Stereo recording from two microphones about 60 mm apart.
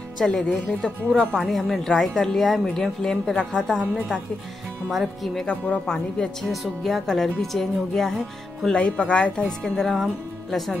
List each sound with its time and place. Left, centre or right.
0.2 s speech: centre
0.8 s a woman's voice: centre
1.4 s a woman's voice: centre
4.9 s speech: centre
5.5 s a woman's voice: centre
6.4 s speech: centre
8.7 s speech: centre
9.6 s speech: centre